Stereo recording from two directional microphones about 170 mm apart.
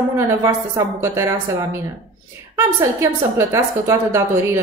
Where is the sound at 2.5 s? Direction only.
15° right (ahead or behind).